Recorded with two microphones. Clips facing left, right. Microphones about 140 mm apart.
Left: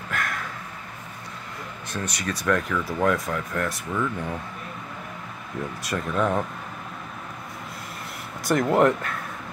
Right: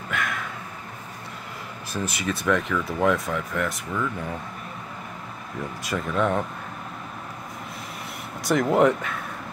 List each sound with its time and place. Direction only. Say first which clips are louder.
0.1 s a sound: right 1 dB; centre (ahead or behind)
1.9 s speech: right 2 dB; 5° right (ahead or behind)
5.9 s speech: right 1 dB; centre (ahead or behind)
8.5 s speech: even; centre (ahead or behind)